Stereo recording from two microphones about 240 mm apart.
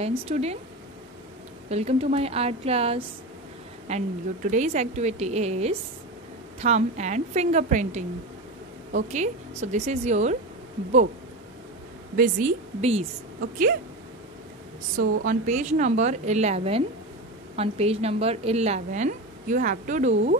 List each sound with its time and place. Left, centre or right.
0.0 s a woman's voice: right
1.7 s a woman's voice: right
12.2 s a woman's voice: right
15.2 s a woman's voice: right